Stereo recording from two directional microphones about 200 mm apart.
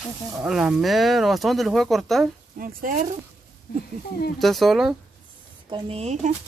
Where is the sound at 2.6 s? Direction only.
45° right (ahead or behind).